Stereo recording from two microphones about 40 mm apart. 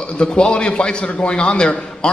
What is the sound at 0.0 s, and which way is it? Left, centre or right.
A man's voice, left.